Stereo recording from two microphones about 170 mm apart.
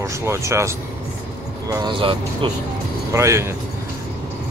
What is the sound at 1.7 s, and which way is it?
Speech, 25° right (ahead or behind).